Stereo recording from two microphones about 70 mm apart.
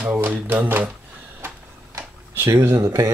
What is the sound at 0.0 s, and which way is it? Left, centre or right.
Speech, right.